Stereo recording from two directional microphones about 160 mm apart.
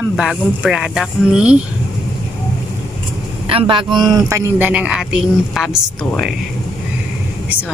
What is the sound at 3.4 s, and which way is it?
Speech, 35° right (ahead or behind).